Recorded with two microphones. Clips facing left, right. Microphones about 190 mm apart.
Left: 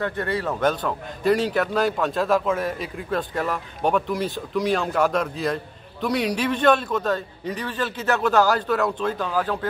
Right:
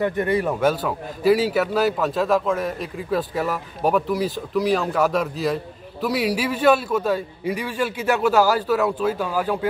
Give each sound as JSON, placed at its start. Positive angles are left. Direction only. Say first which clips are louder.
{"t": 0.0, "sound": "a man's voice", "louder": "right 5 dB", "side_deg": -15}